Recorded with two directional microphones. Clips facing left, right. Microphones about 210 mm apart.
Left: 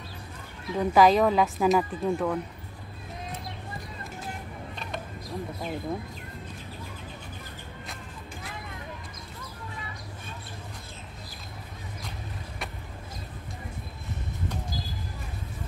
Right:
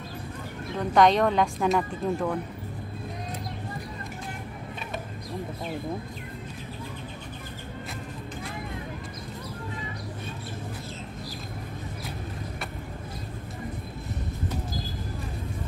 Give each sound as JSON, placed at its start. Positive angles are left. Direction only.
{"t": 0.7, "sound": "a woman's voice", "side_deg": 5}